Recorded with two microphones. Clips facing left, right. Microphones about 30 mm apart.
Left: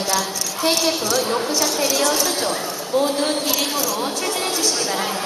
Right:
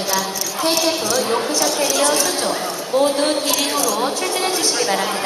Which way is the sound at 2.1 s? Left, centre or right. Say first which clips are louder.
Right 2 dB; centre.